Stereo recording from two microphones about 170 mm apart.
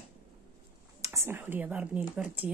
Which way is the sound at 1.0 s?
15° right (ahead or behind).